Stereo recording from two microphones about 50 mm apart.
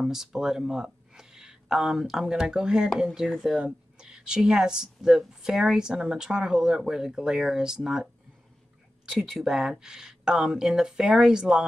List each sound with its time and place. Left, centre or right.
0.0 s speech: centre
2.3 s speech: centre
3.5 s speech: centre
9.1 s speech: centre